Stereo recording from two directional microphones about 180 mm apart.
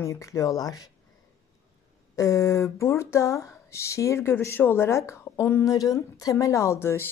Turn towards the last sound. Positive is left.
turn(degrees=15)  # may be behind; listen again after turning